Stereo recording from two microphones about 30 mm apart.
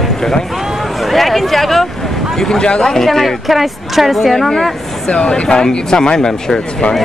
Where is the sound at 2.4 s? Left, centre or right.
Centre.